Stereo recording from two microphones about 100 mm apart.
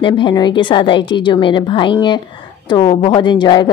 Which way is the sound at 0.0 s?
50° left (ahead or behind).